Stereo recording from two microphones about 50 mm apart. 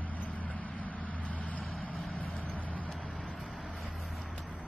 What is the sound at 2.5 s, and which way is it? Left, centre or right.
Vehicle, left.